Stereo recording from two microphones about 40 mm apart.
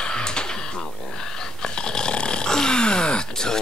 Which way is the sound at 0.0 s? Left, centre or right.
Centre.